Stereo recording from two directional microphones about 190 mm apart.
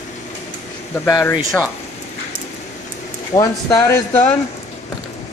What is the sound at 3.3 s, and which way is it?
Speech, 20° left (ahead or behind).